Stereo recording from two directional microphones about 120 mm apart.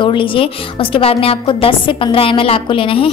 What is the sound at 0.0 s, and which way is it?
A woman's voice, 45° left (ahead or behind).